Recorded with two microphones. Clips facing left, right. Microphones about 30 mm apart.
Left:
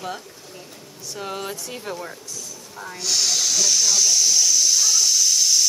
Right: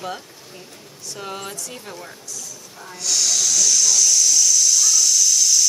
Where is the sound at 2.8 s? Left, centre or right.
Centre.